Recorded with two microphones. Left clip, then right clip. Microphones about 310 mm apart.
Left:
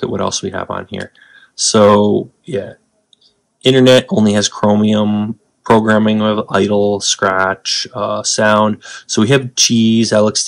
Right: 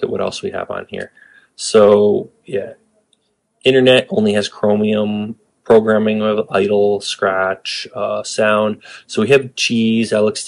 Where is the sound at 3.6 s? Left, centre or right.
Left.